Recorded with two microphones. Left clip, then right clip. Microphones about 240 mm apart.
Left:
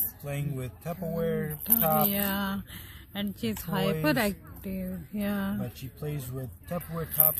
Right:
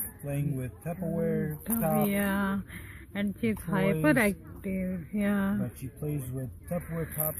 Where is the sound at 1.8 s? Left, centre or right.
Left.